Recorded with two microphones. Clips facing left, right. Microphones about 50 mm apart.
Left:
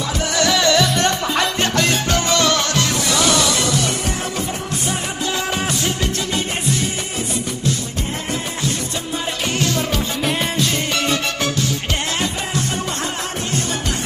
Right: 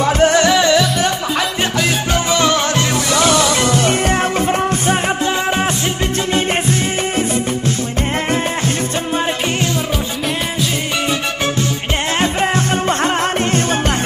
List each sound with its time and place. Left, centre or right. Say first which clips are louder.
0.0 s music: right 8 dB; right
0.5 s music: right 4 dB; centre
0.7 s music: right 2 dB; centre
2.1 s music: right 4 dB; centre
3.3 s music: right 4 dB; right
10.2 s music: left 1 dB; centre